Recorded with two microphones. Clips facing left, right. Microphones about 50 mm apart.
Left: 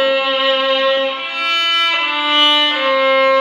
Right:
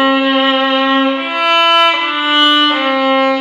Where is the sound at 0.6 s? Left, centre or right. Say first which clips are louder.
Right 3 dB; right.